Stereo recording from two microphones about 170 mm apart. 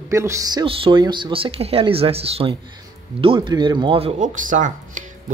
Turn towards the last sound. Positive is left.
turn(degrees=-50)  # may be behind; listen again after turning